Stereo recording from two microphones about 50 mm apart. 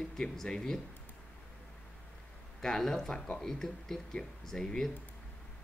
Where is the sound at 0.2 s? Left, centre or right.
Centre.